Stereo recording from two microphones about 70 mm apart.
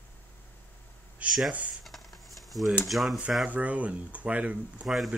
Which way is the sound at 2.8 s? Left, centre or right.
Centre.